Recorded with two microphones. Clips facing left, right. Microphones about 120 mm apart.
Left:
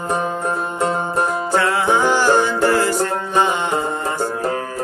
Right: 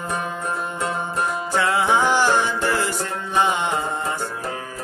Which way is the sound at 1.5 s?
15° right (ahead or behind).